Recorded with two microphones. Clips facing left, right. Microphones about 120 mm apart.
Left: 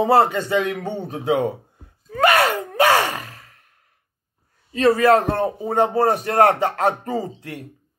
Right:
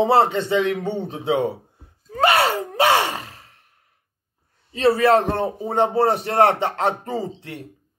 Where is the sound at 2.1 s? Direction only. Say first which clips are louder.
Left 1 dB; 30° right (ahead or behind).